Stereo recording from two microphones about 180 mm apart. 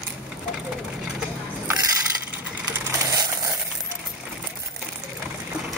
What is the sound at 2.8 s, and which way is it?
Crushing, 20° right (ahead or behind).